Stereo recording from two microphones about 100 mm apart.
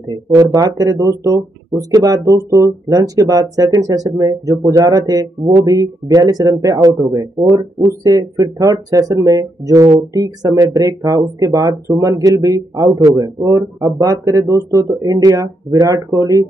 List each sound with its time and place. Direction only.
0.4 s speech: 40° right (ahead or behind)